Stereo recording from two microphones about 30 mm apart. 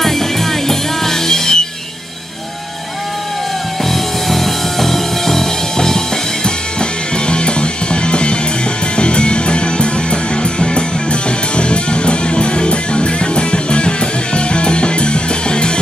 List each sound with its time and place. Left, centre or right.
0.0 s music: centre
3.9 s music: centre; by 15.7 s left